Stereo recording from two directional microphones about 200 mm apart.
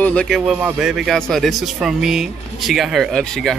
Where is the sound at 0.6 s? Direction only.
10° right (ahead or behind).